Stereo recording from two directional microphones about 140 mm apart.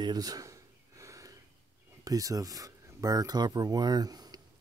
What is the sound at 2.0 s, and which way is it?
Speech, 25° right (ahead or behind).